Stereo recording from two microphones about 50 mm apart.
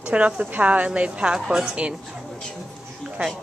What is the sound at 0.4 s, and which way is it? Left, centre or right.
A woman's voice, right.